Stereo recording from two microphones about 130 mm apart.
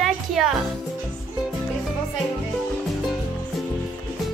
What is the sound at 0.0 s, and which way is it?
Music, centre (ahead or behind).